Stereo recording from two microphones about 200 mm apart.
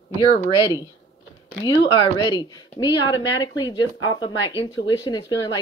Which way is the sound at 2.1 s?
20° left (ahead or behind).